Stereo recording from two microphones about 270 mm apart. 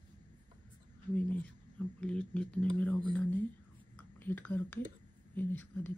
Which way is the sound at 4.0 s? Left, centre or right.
Centre.